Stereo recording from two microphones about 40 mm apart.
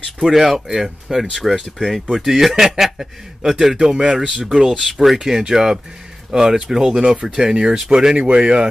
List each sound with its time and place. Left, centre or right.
0.2 s speech: centre; by 4.7 s right
4.8 s speech: centre